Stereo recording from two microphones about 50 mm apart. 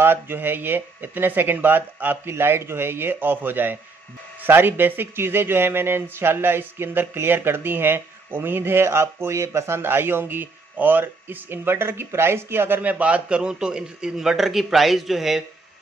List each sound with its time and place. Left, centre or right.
0.0 s speech: right
12.8 s a man's voice: right; by 15.4 s centre